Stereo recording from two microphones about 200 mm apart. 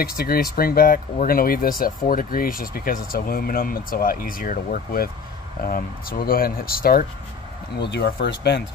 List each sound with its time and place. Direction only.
0.0 s speech: 50° left (ahead or behind)
7.8 s speech: 55° left (ahead or behind)